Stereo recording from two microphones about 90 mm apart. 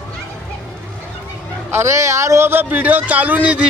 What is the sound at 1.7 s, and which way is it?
A man's voice, 30° right (ahead or behind).